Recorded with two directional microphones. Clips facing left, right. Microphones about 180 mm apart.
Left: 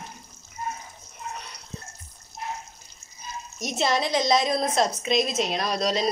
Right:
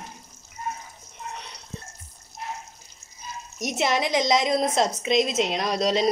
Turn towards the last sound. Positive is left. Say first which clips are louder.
# right 2 dB
turn(degrees=-20)  # may be behind; listen again after turning